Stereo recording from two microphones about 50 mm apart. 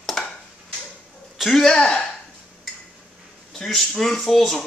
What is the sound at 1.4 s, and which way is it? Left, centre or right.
Speech, centre.